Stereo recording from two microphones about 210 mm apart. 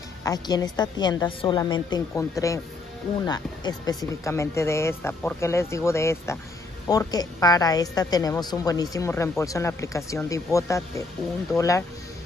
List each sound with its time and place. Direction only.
0.2 s a woman's voice: 15° left (ahead or behind)